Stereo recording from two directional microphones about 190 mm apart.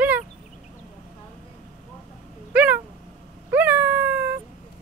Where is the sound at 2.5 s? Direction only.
10° right (ahead or behind).